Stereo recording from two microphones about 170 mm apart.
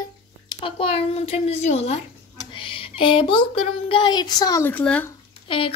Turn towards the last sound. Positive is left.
turn(degrees=30)  # may be behind; listen again after turning